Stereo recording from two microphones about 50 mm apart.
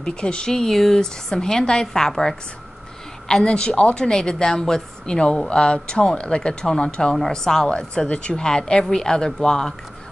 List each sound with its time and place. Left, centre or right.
0.0 s a woman's voice: centre